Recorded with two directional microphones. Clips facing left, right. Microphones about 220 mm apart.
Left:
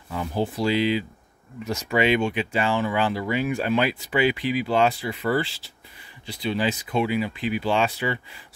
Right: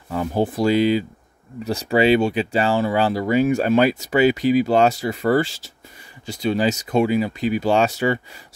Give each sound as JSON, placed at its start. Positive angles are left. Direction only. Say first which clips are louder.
{"t": 0.1, "sound": "speech", "louder": "right 5 dB", "side_deg": -50}
{"t": 1.6, "sound": "speech", "louder": "right 5 dB", "side_deg": -35}